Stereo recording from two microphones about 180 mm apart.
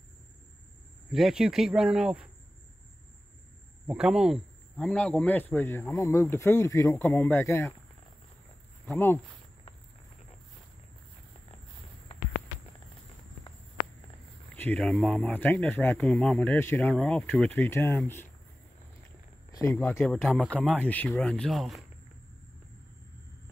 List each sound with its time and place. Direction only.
1.1 s speech: centre (ahead or behind)
3.8 s speech: 5° right (ahead or behind); by 7.6 s 15° left (ahead or behind)
8.8 s speech: 10° left (ahead or behind)
14.5 s speech: 10° left (ahead or behind)
19.5 s speech: 15° left (ahead or behind)
20.0 s speech: centre (ahead or behind)